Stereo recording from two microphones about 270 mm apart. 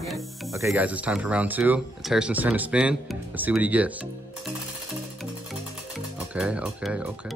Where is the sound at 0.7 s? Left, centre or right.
Centre.